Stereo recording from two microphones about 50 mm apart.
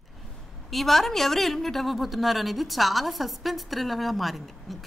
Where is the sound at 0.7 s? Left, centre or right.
Centre.